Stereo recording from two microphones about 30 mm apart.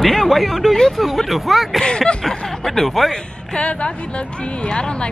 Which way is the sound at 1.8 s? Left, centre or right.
Left.